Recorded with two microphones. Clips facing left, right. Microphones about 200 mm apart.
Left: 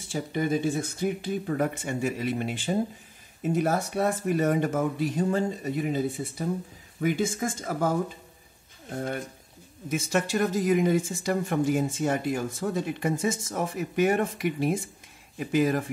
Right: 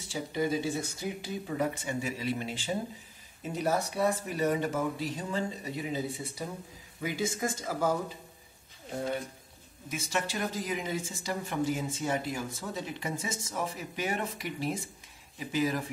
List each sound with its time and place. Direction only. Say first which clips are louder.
0.1 s speech: left 4 dB; 55° left (ahead or behind)
9.8 s speech: left 7 dB; 50° left (ahead or behind)